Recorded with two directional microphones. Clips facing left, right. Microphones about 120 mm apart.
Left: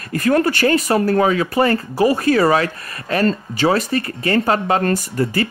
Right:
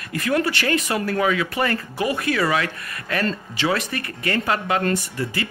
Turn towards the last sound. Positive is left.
turn(degrees=40)  # may be behind; listen again after turning